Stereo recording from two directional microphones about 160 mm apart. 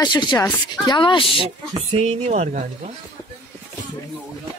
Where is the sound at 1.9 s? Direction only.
40° right (ahead or behind).